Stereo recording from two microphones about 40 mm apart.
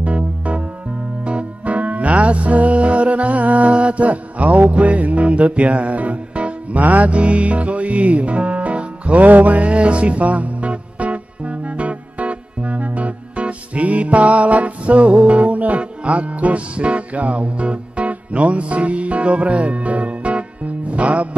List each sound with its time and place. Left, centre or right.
0.0 s music: right
7.2 s music: right